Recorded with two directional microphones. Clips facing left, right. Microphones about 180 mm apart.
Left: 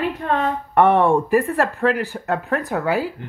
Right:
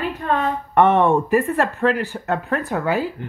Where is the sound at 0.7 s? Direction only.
10° left (ahead or behind).